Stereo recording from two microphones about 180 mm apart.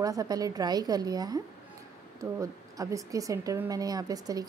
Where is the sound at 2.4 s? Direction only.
20° right (ahead or behind).